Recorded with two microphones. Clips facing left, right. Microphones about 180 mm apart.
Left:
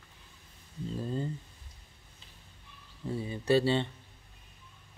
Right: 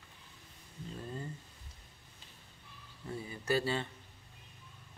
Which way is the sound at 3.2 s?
25° left (ahead or behind).